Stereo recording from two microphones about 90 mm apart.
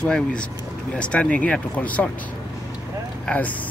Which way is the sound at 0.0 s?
10° left (ahead or behind).